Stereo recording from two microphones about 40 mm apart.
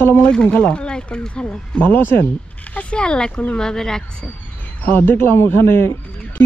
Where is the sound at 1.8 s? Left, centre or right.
Left.